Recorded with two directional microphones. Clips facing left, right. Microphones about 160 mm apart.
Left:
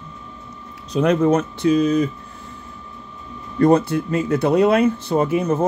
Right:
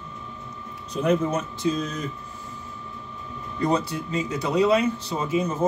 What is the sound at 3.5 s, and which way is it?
Speech, 55° left (ahead or behind).